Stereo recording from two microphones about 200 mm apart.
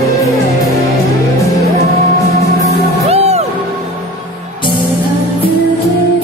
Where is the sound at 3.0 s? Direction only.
30° right (ahead or behind).